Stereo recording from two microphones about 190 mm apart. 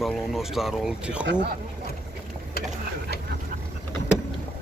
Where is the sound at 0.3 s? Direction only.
Centre (ahead or behind).